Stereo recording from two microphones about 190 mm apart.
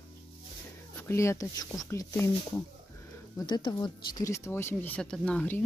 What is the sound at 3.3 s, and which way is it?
Speech, 20° left (ahead or behind).